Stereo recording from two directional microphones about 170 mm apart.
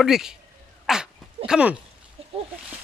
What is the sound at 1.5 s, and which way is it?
Speech, 5° right (ahead or behind).